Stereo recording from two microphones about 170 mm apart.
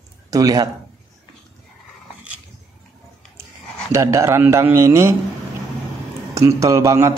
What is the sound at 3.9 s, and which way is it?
A man's voice, 15° right (ahead or behind).